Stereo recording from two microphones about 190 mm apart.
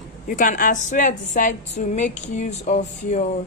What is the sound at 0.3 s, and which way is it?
A woman's voice, 45° left (ahead or behind).